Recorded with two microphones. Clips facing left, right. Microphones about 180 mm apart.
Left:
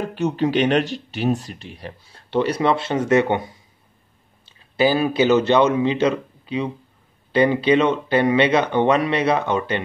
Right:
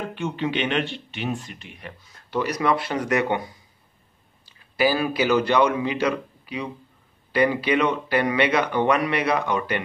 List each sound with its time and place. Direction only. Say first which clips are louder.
0.1 s speech: left 9 dB; 40° left (ahead or behind)